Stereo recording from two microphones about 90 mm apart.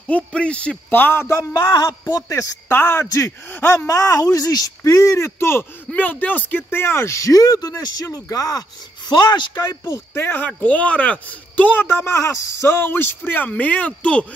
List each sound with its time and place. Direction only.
0.1 s speech: 10° left (ahead or behind)
1.6 s speech: 35° left (ahead or behind)
2.7 s speech: 25° left (ahead or behind); by 8.6 s 40° left (ahead or behind)
9.1 s speech: 55° left (ahead or behind)
9.8 s speech: 25° left (ahead or behind)